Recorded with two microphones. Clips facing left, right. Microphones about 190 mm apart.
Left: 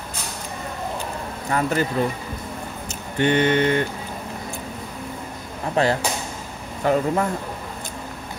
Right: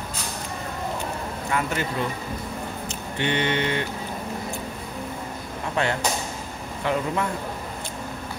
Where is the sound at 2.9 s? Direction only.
45° left (ahead or behind).